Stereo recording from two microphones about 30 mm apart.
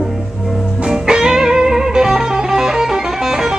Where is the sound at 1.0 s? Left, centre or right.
Right.